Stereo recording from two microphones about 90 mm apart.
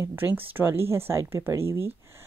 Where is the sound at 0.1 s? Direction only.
20° right (ahead or behind).